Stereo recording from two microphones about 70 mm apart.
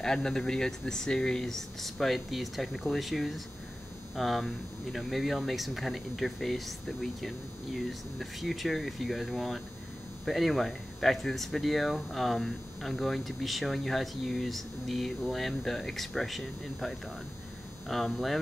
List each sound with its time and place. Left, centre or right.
0.0 s speech: centre